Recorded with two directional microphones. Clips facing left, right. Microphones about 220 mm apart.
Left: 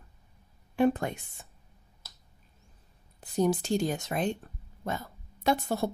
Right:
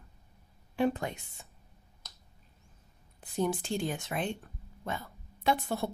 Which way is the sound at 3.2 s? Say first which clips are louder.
Left 5 dB; 40° left (ahead or behind).